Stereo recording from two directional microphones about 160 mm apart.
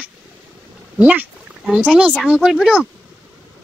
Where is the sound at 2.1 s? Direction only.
Centre (ahead or behind).